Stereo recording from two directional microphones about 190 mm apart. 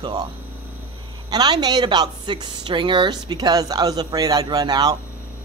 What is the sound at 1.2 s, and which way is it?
Speech, 20° right (ahead or behind).